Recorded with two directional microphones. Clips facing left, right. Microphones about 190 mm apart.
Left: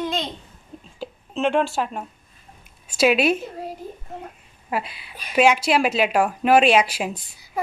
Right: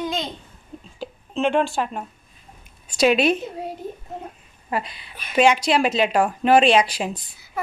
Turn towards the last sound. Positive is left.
turn(degrees=10)  # may be behind; listen again after turning